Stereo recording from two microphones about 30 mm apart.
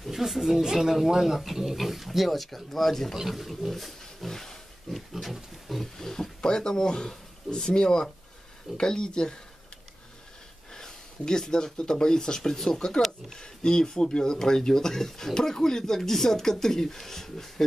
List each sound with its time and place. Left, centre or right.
0.1 s speech: centre
3.2 s speech: centre
3.7 s speech: centre
4.3 s wild animals: centre
5.1 s pig: centre
5.9 s speech: centre
10.7 s speech: left